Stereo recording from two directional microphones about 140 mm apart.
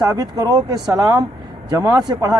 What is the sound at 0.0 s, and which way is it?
Speech, 25° right (ahead or behind).